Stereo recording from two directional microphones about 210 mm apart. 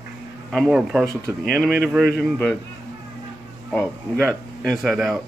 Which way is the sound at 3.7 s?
Centre (ahead or behind).